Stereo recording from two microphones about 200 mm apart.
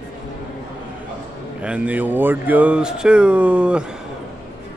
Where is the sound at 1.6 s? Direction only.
5° right (ahead or behind).